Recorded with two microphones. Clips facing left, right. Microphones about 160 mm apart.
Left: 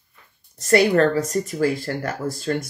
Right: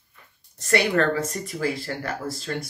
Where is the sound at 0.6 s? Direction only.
40° left (ahead or behind).